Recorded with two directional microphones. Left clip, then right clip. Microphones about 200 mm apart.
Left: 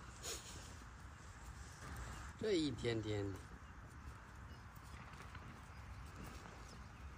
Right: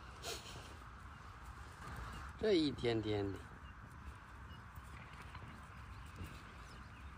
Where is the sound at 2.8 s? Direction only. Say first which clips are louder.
Right 4 dB; 25° right (ahead or behind).